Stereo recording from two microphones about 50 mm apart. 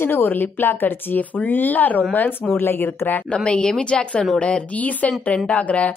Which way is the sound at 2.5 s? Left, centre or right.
Left.